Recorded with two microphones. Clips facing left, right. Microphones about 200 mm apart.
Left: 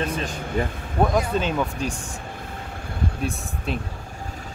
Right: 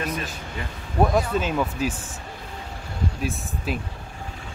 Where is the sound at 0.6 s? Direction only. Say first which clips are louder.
Left 11 dB; 50° left (ahead or behind).